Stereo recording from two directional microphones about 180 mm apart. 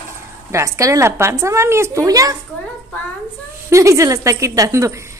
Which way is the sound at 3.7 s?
15° right (ahead or behind).